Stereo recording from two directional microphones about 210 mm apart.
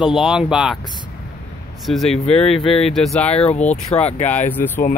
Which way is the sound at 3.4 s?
30° left (ahead or behind).